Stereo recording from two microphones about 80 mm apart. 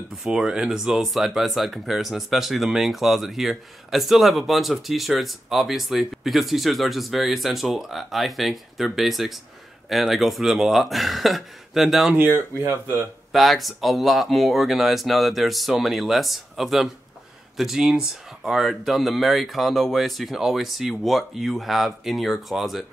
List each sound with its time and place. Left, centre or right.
0.2 s speech: centre
12.2 s speech: right
13.3 s speech: centre